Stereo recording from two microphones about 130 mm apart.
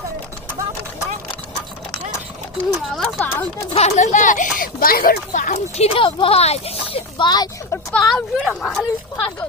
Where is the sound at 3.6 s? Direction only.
55° left (ahead or behind); by 4.5 s 80° left.